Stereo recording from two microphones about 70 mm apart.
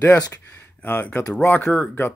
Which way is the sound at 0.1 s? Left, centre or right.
Left.